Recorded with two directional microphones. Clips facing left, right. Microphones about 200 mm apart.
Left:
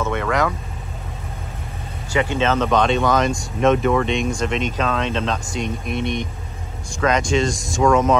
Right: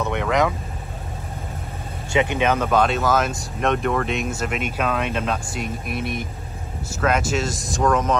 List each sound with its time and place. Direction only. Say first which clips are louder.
0.0 s vehicle: even; 15° right (ahead or behind)
2.1 s speech: left 1 dB; 15° right (ahead or behind); by 8.2 s centre (ahead or behind)